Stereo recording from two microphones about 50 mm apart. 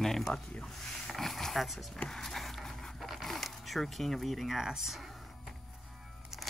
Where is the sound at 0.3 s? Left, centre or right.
Centre.